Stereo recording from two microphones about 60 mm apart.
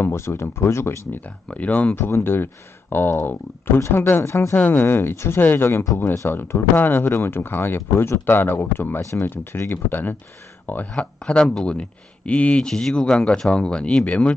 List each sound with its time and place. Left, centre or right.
0.0 s speech: left
1.5 s speech: left
2.0 s speech: left
4.6 s speech: left
11.0 s speech: centre